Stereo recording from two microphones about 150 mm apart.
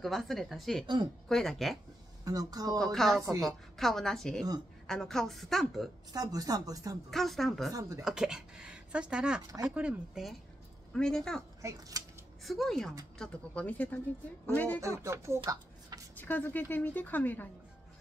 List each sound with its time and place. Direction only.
0.0 s speech: centre (ahead or behind)
2.2 s speech: 25° right (ahead or behind)
2.8 s speech: centre (ahead or behind)
6.1 s speech: 25° right (ahead or behind)
7.1 s speech: centre (ahead or behind)
10.9 s speech: 5° left (ahead or behind)
11.6 s speech: 25° right (ahead or behind)
12.4 s speech: centre (ahead or behind)
14.8 s speech: 20° right (ahead or behind)
15.4 s a sound: 25° right (ahead or behind)
16.2 s speech: 10° left (ahead or behind)